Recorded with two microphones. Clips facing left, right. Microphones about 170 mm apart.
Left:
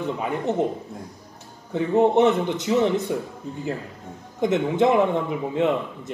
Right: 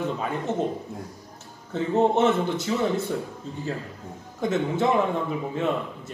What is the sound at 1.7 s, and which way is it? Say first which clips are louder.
A man's voice: left 3 dB; 15° left (ahead or behind).